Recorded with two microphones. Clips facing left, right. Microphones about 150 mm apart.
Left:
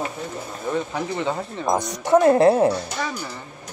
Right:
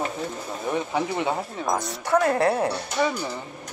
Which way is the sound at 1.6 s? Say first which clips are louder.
Left 5 dB; 20° left (ahead or behind).